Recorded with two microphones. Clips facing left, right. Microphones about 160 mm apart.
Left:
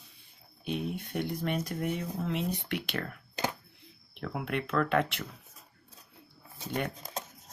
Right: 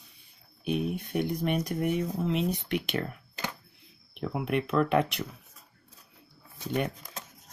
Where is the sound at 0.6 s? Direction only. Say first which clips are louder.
Right 4 dB; 15° right (ahead or behind).